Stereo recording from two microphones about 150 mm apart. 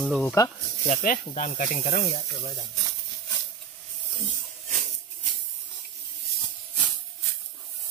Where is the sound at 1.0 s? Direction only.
60° left (ahead or behind).